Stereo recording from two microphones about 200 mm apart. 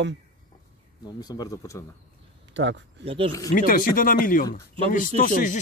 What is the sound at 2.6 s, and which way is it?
Speech, 65° right (ahead or behind).